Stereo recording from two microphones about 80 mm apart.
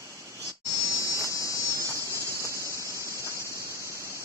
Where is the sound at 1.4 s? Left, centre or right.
Left.